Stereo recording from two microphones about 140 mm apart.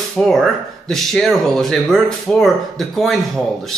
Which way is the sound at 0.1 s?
Centre (ahead or behind).